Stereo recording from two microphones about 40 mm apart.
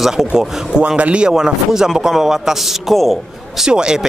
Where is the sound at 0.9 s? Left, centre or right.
Right.